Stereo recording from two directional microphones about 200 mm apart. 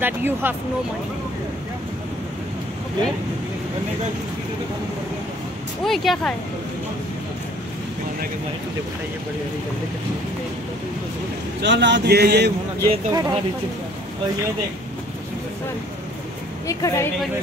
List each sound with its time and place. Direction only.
0.0 s speech: 10° right (ahead or behind)
5.9 s speech: centre (ahead or behind)
11.6 s speech: 60° right (ahead or behind)
12.8 s speech: 20° right (ahead or behind)
16.6 s speech: 15° left (ahead or behind)